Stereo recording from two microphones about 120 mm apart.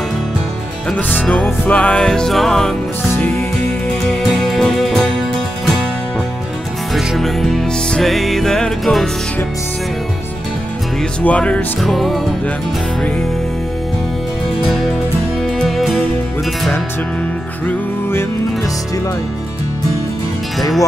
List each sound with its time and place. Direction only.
0.8 s music: 10° left (ahead or behind)
4.1 s music: 5° left (ahead or behind)
6.9 s music: centre (ahead or behind)
11.2 s music: 10° left (ahead or behind)
15.4 s music: centre (ahead or behind)